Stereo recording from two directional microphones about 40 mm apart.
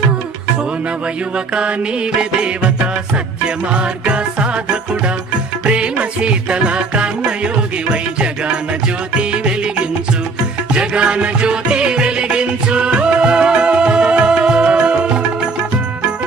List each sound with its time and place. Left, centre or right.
2.1 s music: right
5.7 s music: right
10.7 s music: right